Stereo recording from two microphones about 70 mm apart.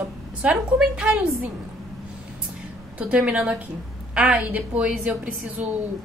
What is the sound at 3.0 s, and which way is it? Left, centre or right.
A woman's voice, centre.